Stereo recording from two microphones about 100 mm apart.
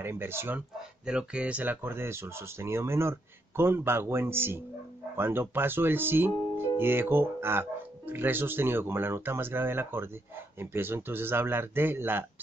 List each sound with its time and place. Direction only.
0.0 s speech: 25° right (ahead or behind)
0.6 s speech: 10° right (ahead or behind)